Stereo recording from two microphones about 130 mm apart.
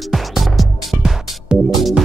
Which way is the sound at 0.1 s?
Centre (ahead or behind).